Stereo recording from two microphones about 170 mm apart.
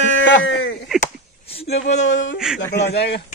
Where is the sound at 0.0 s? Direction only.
90° left.